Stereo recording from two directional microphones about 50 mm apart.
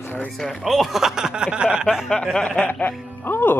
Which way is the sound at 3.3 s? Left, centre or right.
Left.